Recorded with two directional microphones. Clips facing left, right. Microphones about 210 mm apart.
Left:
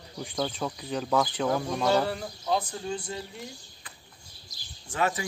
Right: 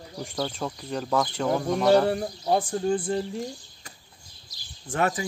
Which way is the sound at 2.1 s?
55° right (ahead or behind).